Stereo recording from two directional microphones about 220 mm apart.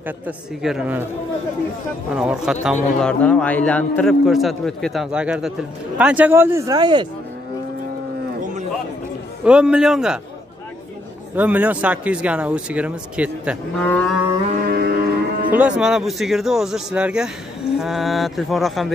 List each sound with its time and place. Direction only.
0.6 s a man's voice: centre (ahead or behind)
2.1 s a man's voice: 5° right (ahead or behind); by 7.1 s 20° right (ahead or behind)
9.4 s a man's voice: 5° right (ahead or behind)
11.3 s a man's voice: 5° right (ahead or behind)
14.7 s cattle: 45° right (ahead or behind)
15.5 s a man's voice: 5° right (ahead or behind)